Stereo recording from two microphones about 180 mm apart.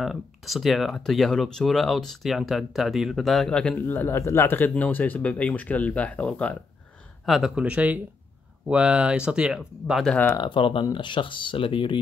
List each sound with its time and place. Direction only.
0.0 s speech: centre (ahead or behind)
10.4 s speech: 25° left (ahead or behind)